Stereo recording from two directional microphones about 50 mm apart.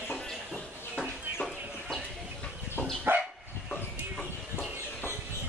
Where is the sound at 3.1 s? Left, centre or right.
Right.